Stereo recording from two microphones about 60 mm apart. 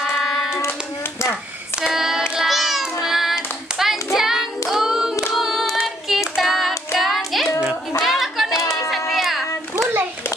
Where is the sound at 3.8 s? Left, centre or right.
Centre.